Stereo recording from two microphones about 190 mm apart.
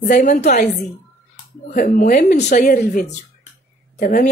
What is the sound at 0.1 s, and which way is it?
Speech, 40° left (ahead or behind).